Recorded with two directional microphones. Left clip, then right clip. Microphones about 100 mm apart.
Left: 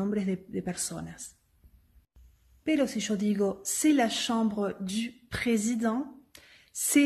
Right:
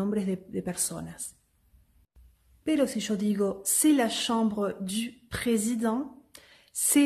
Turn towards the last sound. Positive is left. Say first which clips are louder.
# even
turn(degrees=-30)  # may be behind; listen again after turning